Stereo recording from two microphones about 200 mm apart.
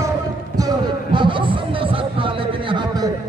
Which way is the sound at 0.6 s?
20° right (ahead or behind).